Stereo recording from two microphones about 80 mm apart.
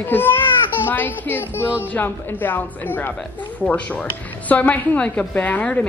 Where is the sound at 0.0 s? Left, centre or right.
Left.